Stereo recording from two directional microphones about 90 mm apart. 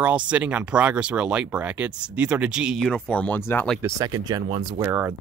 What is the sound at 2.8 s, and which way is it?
Speech, 15° left (ahead or behind).